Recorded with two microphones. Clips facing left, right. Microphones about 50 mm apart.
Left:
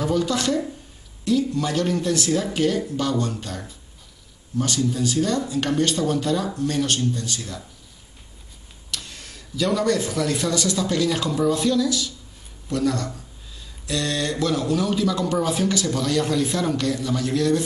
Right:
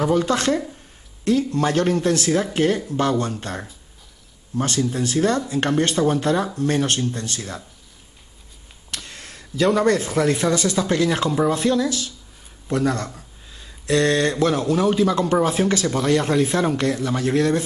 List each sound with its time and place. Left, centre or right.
0.1 s speech: right
8.9 s speech: right